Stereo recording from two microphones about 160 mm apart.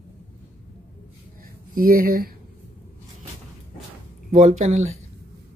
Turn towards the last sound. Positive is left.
turn(degrees=-45)  # may be behind; listen again after turning